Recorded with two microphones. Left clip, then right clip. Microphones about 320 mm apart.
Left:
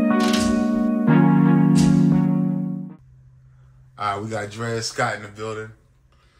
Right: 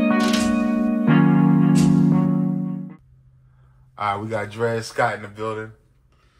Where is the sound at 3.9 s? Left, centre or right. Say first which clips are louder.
Right 1 dB; centre.